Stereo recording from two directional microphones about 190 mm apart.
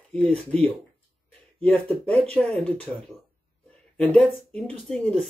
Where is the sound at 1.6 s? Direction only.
5° left (ahead or behind).